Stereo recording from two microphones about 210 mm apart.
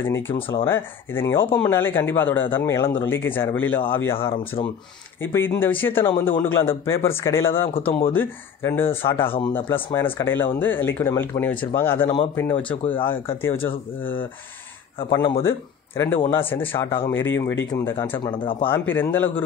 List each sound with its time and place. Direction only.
0.0 s speech: 10° left (ahead or behind)
4.2 s speech: 25° left (ahead or behind)
5.2 s speech: 10° left (ahead or behind)
9.2 s speech: 25° left (ahead or behind)
10.1 s speech: 10° left (ahead or behind)
15.0 s speech: 20° left (ahead or behind)
18.2 s speech: 25° left (ahead or behind)
18.7 s speech: 10° left (ahead or behind)